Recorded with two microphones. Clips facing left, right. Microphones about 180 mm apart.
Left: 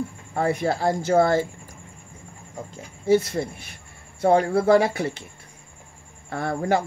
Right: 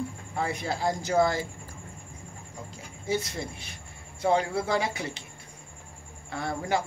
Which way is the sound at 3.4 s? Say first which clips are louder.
Left 8 dB; 50° left (ahead or behind).